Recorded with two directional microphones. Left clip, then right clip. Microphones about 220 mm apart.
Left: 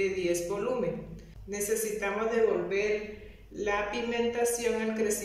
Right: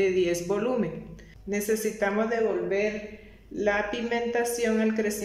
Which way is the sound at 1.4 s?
35° right (ahead or behind).